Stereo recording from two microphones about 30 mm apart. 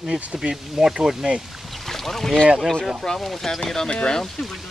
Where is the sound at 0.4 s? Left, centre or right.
Centre.